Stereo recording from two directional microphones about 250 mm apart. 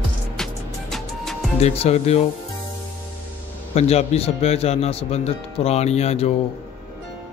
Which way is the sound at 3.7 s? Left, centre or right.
Left.